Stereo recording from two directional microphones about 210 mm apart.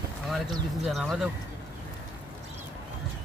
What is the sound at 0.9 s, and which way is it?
Speech, centre (ahead or behind).